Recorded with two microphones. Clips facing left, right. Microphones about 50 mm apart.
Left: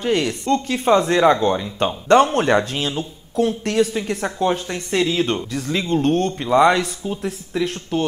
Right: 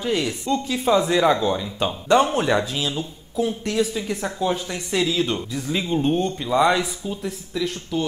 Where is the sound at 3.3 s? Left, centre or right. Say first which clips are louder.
Left 4 dB; left.